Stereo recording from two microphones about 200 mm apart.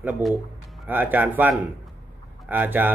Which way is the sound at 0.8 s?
10° right (ahead or behind).